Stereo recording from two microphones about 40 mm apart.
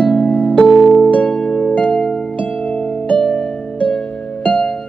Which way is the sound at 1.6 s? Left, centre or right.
Left.